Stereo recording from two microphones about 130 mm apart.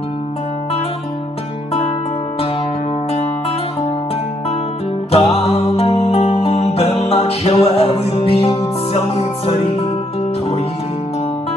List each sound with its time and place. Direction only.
5.1 s music: 50° left (ahead or behind)